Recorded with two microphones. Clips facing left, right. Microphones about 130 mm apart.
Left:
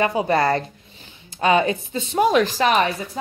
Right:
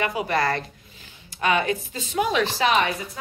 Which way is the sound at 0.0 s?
30° left (ahead or behind).